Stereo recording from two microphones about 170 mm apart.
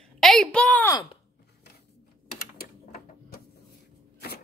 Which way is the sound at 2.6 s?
60° left (ahead or behind).